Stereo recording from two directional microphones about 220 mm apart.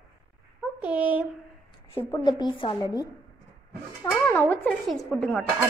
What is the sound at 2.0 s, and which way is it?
A woman's voice, 15° left (ahead or behind).